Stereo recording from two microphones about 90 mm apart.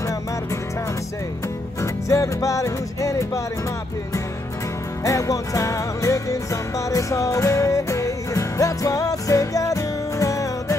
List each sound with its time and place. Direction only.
1.8 s music: 35° left (ahead or behind)
5.0 s music: 40° left (ahead or behind)